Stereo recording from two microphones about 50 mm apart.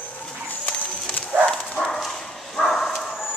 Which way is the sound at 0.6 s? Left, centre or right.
Left.